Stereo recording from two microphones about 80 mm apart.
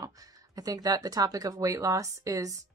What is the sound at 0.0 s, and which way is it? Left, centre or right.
Speech, right.